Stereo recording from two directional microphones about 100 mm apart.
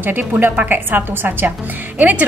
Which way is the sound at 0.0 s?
20° right (ahead or behind).